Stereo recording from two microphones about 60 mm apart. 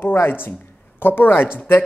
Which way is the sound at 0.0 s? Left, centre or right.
Left.